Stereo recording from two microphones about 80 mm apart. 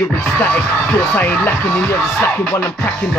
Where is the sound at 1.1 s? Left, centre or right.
Left.